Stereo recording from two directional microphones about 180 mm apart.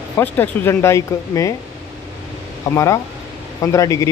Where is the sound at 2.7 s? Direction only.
15° left (ahead or behind).